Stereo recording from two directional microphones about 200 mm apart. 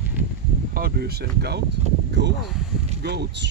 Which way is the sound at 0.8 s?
50° right (ahead or behind).